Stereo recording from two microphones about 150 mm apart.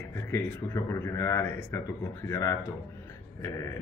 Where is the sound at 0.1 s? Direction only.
15° left (ahead or behind).